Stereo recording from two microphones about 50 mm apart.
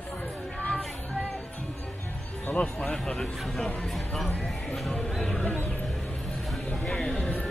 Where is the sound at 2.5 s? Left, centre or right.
Left.